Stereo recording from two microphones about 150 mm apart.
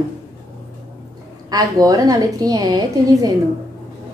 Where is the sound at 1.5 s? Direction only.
25° right (ahead or behind).